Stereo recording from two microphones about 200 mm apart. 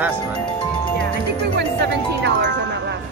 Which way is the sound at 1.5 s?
55° right (ahead or behind).